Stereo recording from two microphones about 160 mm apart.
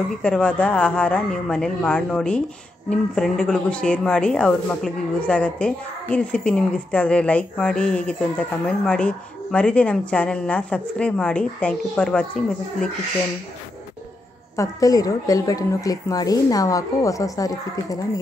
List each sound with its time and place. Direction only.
0.2 s a woman's voice: 5° left (ahead or behind)
14.6 s a woman's voice: 20° left (ahead or behind)